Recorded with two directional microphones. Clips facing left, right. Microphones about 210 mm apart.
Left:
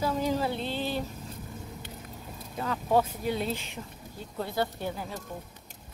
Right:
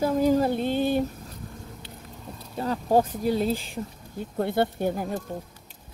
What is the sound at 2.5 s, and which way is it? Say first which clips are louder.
Speech: right 4 dB; 35° right (ahead or behind).